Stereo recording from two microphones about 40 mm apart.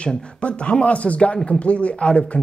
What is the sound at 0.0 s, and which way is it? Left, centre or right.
Speech, left.